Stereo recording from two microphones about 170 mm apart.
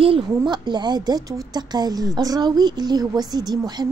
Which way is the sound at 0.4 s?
25° right (ahead or behind).